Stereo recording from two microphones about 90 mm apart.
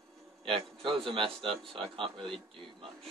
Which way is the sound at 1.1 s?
80° right.